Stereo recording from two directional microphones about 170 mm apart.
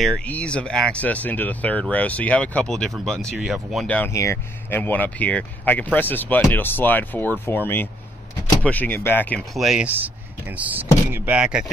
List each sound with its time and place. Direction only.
0.0 s speech: 5° left (ahead or behind)
9.6 s speech: centre (ahead or behind)